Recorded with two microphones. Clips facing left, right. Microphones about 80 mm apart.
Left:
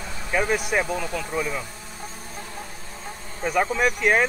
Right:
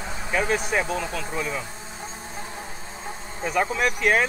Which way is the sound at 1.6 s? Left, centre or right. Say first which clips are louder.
Right 1 dB; right.